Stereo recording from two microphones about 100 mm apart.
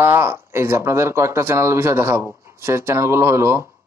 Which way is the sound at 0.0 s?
25° right (ahead or behind).